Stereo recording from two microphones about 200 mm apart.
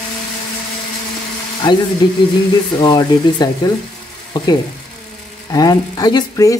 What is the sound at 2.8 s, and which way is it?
Speech, 20° left (ahead or behind).